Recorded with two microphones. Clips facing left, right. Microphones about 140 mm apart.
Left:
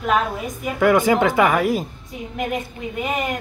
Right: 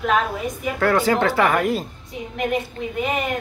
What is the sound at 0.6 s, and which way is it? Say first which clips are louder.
Speech: left 3 dB; 15° left (ahead or behind).